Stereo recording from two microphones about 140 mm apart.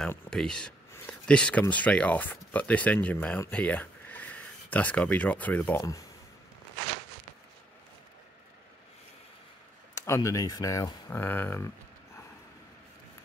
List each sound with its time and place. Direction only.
0.3 s speech: 5° left (ahead or behind)
5.8 s speech: 25° left (ahead or behind)
9.9 s speech: 20° left (ahead or behind)
11.1 s speech: 15° left (ahead or behind)